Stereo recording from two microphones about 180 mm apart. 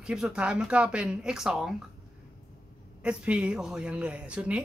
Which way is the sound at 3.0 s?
5° right (ahead or behind).